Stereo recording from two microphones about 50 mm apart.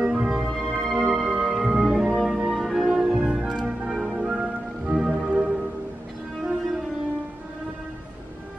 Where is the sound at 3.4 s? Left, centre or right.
Right.